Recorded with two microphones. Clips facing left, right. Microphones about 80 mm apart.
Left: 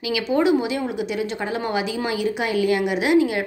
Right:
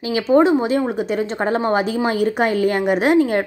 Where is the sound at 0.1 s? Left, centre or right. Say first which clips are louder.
Right 5 dB; right.